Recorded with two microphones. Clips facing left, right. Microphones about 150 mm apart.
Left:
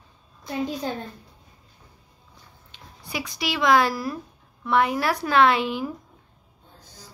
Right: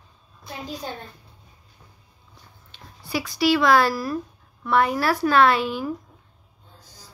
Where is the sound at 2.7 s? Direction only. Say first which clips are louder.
Right 4 dB; 20° left (ahead or behind).